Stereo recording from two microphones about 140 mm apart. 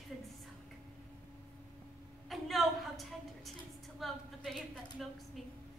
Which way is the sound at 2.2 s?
Centre (ahead or behind).